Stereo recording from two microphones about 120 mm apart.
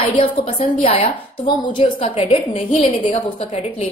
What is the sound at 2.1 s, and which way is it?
Speech, 55° left (ahead or behind).